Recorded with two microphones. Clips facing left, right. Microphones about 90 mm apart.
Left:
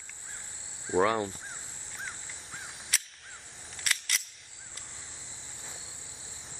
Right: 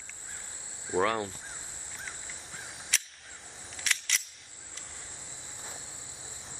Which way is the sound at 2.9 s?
5° left (ahead or behind).